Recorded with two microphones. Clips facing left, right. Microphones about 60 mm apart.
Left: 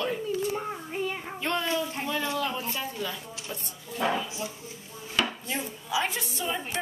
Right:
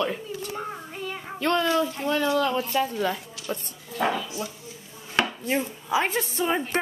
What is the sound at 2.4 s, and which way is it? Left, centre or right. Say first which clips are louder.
Speech: right 6 dB; right.